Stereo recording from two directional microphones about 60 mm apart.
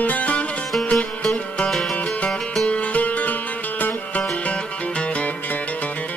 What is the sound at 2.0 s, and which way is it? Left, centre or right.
Music, left.